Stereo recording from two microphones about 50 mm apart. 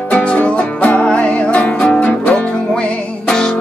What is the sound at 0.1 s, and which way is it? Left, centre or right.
Music, left.